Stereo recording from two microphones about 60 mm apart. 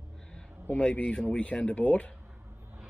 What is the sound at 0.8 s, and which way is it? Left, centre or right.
Speech, centre.